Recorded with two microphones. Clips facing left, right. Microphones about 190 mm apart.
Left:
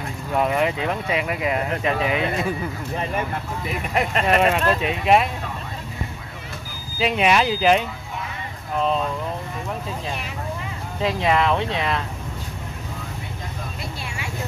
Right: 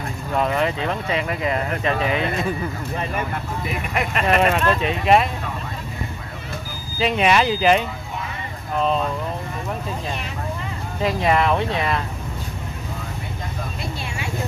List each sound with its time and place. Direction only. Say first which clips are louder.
0.3 s speech: even; 10° left (ahead or behind)
3.9 s speech: left 3 dB; 30° left (ahead or behind)
4.4 s speech: right 2 dB; 5° left (ahead or behind)
7.0 s speech: right 1 dB; 5° left (ahead or behind)
11.0 s speech: right 1 dB; 5° right (ahead or behind)